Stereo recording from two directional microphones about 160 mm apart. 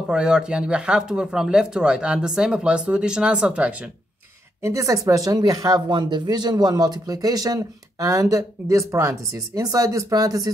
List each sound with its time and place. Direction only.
0.1 s speech: 5° right (ahead or behind)
4.6 s speech: 20° right (ahead or behind)